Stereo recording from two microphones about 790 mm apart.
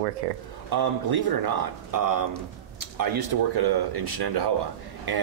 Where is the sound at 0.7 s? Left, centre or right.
Right.